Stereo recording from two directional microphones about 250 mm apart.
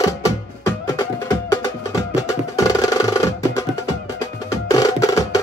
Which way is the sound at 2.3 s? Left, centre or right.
Centre.